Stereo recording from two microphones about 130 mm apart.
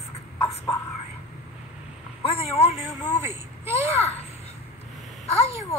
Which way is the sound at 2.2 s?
50° left (ahead or behind).